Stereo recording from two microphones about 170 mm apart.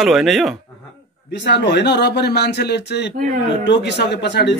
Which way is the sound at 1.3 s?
90° left.